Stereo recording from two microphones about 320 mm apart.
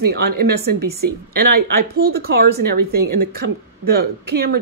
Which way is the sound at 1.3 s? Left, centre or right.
Right.